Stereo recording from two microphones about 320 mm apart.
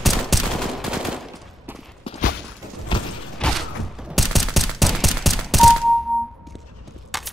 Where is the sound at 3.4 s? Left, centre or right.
Centre.